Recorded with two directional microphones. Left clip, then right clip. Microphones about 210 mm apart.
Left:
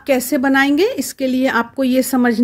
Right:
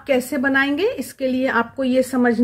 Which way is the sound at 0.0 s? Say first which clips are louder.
Left 3 dB; 45° left (ahead or behind).